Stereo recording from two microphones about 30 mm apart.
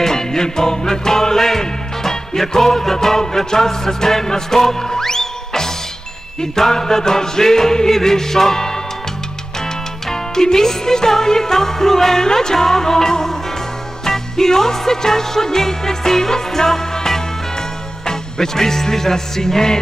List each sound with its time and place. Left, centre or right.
0.0 s music: centre
6.7 s music: centre
10.0 s music: centre
12.2 s music: left